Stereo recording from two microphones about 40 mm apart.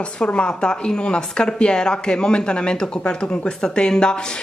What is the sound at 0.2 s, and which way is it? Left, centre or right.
Speech, left.